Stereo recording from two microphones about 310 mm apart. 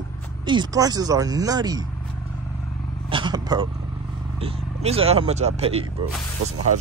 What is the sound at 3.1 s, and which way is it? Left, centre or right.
Speech, centre.